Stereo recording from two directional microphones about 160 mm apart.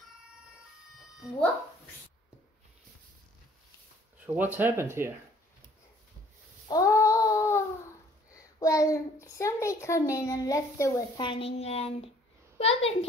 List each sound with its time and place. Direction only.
0.9 s music: centre (ahead or behind)
4.4 s speech: 10° right (ahead or behind)
6.7 s a sound: 20° left (ahead or behind)
8.3 s a child's voice: 20° left (ahead or behind)
11.2 s a child's voice: 35° left (ahead or behind)